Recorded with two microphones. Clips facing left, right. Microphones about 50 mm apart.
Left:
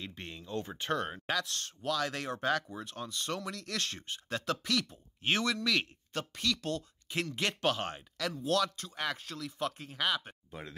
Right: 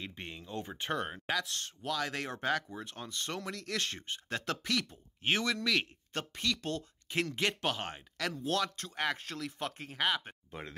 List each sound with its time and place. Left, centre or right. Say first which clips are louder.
0.0 s speech: even; right
2.4 s speech: left 1 dB; centre
2.8 s speech: left 1 dB; right
7.3 s speech: left 1 dB; centre
8.5 s speech: left 3 dB; right
8.7 s speech: right 2 dB; right
9.6 s speech: left 2 dB; right